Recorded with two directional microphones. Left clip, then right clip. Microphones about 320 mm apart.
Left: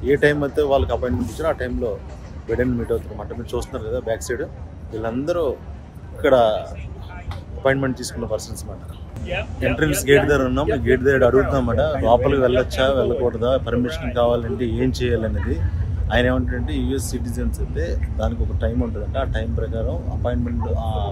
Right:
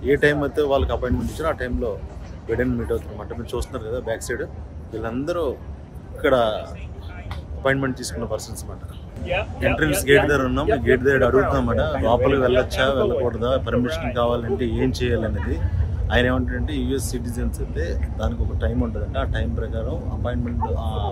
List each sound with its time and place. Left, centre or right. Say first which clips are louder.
0.0 s speech: left 1 dB; centre
7.6 s speech: left 2 dB; centre
9.2 s speech: right 2 dB; centre
9.8 s speech: left 1 dB; centre